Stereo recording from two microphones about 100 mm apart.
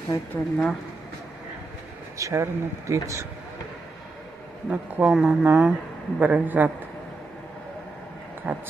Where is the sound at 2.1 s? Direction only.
30° right (ahead or behind).